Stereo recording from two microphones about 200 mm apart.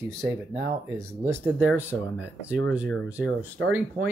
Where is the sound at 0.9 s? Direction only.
15° right (ahead or behind).